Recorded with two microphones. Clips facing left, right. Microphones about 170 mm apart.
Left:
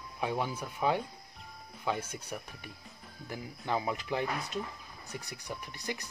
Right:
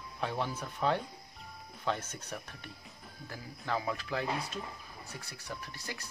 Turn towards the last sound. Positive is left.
turn(degrees=20)  # may be behind; listen again after turning